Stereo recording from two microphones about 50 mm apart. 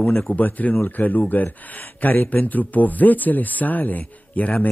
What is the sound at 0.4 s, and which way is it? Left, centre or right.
Speech, left.